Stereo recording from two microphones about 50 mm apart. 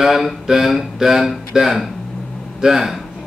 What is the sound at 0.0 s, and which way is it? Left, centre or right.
A man's voice, centre.